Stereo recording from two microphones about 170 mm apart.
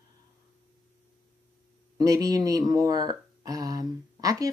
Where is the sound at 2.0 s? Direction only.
20° right (ahead or behind).